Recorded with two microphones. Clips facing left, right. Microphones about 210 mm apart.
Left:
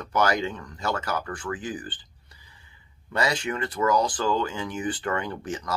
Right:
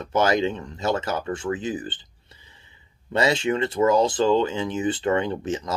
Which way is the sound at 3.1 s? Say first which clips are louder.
Right 5 dB; 25° right (ahead or behind).